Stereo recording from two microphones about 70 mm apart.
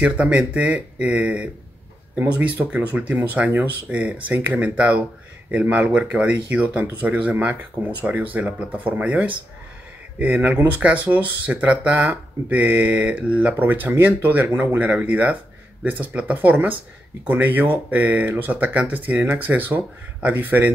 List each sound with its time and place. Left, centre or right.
0.0 s speech: centre; by 14.8 s right
14.8 s speech: right